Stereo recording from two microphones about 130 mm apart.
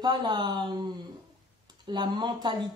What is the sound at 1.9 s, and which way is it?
Speech, 35° right (ahead or behind).